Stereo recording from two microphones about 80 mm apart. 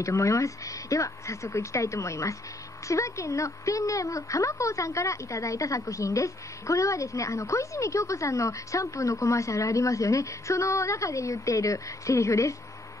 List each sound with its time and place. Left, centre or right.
0.0 s a woman's voice: left